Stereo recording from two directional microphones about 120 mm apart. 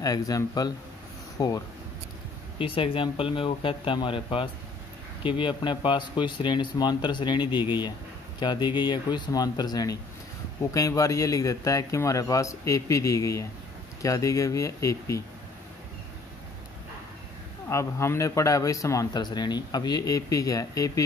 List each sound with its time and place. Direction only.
0.0 s a man's voice: 30° left (ahead or behind)
2.6 s a man's voice: 50° left (ahead or behind); by 15.2 s 25° left (ahead or behind)
17.6 s speech: 25° left (ahead or behind)